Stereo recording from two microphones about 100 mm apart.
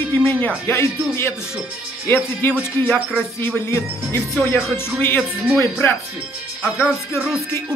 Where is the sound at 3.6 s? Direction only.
25° left (ahead or behind).